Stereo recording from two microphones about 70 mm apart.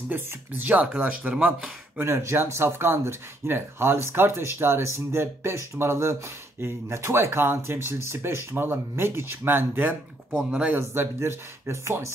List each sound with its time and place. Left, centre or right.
0.1 s speech: right
0.9 s speech: centre
2.0 s speech: right
9.8 s speech: centre
10.8 s speech: right